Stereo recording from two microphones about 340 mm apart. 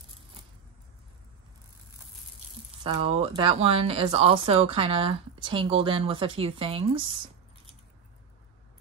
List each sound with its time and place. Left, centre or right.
2.8 s speech: centre